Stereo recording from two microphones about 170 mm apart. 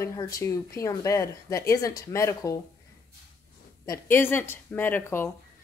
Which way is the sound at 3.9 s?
15° left (ahead or behind).